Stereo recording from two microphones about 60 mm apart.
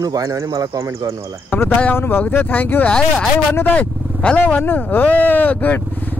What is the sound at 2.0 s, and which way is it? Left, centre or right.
Speech, left.